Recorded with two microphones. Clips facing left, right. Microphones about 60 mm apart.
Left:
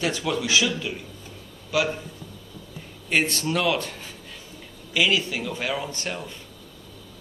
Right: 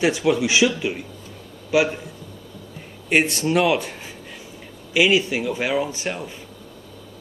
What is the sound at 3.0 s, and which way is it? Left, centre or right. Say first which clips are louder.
Speech: right 4 dB; centre.